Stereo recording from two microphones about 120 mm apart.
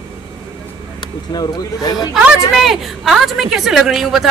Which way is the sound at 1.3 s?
35° left (ahead or behind).